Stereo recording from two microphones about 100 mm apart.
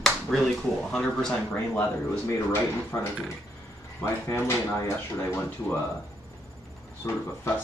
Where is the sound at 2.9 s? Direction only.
25° left (ahead or behind).